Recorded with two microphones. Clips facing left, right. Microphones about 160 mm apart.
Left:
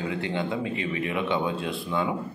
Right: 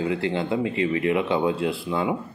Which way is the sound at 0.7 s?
25° left (ahead or behind).